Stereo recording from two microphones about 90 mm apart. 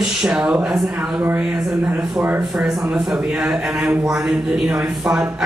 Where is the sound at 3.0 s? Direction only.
10° right (ahead or behind).